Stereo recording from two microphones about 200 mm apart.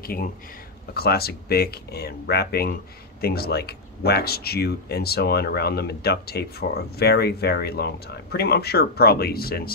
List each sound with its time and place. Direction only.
0.9 s speech: 50° left (ahead or behind)